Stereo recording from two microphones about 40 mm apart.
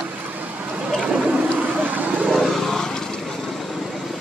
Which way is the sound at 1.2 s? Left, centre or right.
Right.